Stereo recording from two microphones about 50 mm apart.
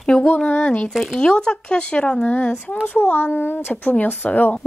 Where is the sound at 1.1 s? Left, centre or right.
Centre.